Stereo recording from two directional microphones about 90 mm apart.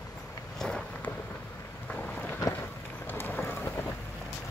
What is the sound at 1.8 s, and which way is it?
Wind noise, 15° left (ahead or behind).